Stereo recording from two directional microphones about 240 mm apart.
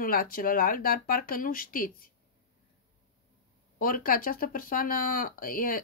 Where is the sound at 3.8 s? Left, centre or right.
Left.